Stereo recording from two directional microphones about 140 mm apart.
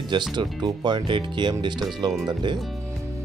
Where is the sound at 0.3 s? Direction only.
30° right (ahead or behind).